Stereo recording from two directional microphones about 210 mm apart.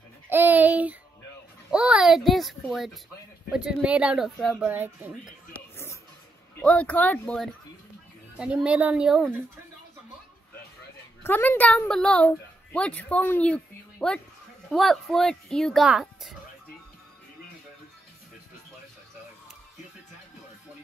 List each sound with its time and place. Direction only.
0.3 s a sound: 10° right (ahead or behind)
1.7 s a child's voice: 5° right (ahead or behind)
6.6 s speech: 5° left (ahead or behind)
11.2 s a woman's voice: 10° left (ahead or behind)